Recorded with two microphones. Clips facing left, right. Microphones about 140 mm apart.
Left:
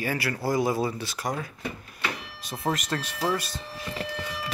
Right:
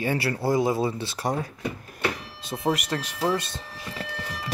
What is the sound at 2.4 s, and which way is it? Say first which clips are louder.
Speech: right 3 dB; 20° right (ahead or behind).